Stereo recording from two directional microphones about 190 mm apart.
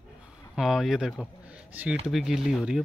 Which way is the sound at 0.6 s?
Centre (ahead or behind).